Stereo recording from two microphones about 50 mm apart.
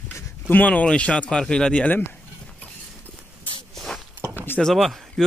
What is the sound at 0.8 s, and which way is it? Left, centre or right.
Speech, centre.